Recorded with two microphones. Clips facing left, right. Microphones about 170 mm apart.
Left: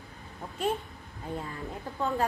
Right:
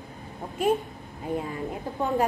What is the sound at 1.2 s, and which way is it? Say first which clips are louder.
A woman's voice: right 7 dB; 15° right (ahead or behind).